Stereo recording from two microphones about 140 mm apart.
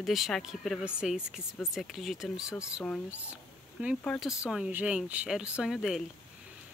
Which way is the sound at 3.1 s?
10° right (ahead or behind).